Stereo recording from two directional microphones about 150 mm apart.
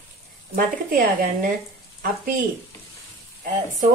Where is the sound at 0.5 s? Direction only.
70° right (ahead or behind).